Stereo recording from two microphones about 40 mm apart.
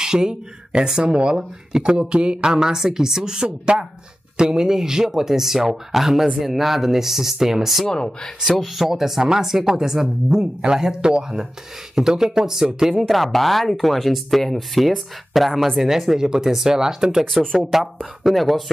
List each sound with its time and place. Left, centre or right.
0.0 s speech: centre
7.9 s speech: centre
8.5 s speech: centre
12.9 s speech: centre
15.7 s speech: centre
17.2 s speech: centre
17.6 s speech: centre